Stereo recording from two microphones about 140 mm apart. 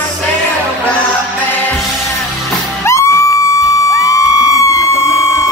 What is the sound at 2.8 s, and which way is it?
Music, 20° left (ahead or behind).